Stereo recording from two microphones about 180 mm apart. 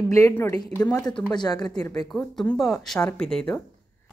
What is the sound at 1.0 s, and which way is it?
Speech, 25° left (ahead or behind).